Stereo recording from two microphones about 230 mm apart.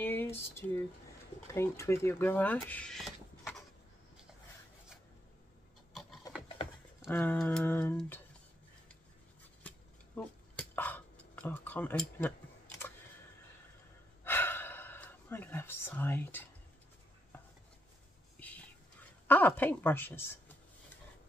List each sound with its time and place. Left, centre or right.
0.0 s a sound: centre
1.5 s speech: centre
7.1 s a woman's voice: centre
9.6 s a sound: centre
14.2 s gasp: centre
19.2 s a woman's voice: centre